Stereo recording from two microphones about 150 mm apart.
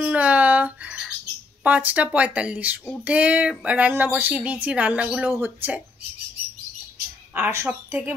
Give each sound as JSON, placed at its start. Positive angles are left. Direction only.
{"t": 0.0, "sound": "bird", "side_deg": -10}
{"t": 1.6, "sound": "speech", "side_deg": -10}
{"t": 7.3, "sound": "speech", "side_deg": -15}